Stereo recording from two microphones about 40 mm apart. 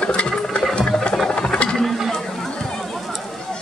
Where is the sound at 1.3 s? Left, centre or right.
Left.